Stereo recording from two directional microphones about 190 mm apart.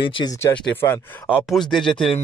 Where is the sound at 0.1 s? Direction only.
20° left (ahead or behind); by 2.1 s centre (ahead or behind).